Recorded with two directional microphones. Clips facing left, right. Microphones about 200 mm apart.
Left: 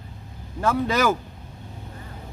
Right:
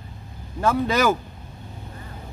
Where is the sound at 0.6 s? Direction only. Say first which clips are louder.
Right 1 dB; 15° right (ahead or behind).